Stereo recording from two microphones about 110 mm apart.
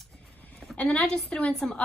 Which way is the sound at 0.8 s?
15° left (ahead or behind).